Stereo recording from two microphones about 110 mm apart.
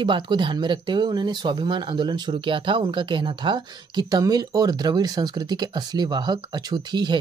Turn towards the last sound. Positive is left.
turn(degrees=-40)  # may be behind; listen again after turning